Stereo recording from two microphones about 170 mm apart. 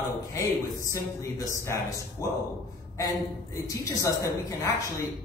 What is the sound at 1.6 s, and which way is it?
A man's voice, 15° left (ahead or behind).